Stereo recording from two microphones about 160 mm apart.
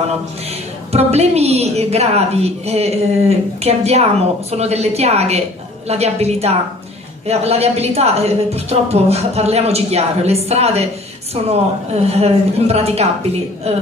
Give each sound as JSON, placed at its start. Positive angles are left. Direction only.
{"t": 0.9, "sound": "a woman's voice", "side_deg": -40}